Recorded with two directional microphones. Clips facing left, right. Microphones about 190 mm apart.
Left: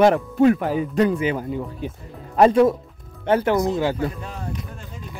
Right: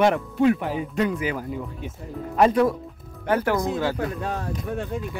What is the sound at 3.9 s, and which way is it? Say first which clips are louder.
Speech: even; 70° right (ahead or behind).